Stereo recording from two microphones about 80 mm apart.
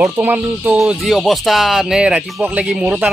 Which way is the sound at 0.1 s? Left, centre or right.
Right.